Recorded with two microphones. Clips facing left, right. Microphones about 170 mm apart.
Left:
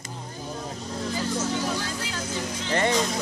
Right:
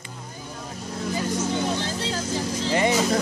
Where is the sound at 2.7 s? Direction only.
10° right (ahead or behind).